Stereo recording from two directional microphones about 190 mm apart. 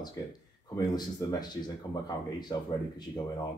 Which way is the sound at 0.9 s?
20° left (ahead or behind).